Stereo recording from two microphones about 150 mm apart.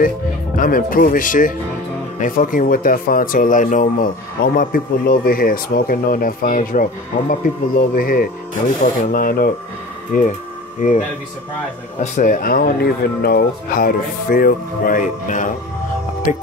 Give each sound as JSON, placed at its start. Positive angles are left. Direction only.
{"t": 0.6, "sound": "speech", "side_deg": 70}
{"t": 4.6, "sound": "speech", "side_deg": 70}
{"t": 12.0, "sound": "speech", "side_deg": 65}